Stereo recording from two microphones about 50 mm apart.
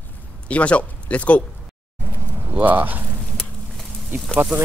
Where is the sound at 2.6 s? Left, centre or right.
Right.